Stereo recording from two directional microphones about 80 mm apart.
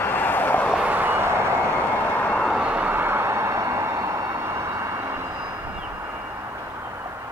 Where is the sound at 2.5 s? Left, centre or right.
Centre; by 5.2 s right.